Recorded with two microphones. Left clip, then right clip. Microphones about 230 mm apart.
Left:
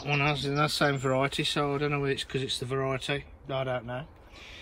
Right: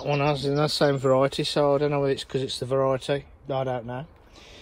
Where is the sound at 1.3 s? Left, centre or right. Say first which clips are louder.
Right 7 dB; centre.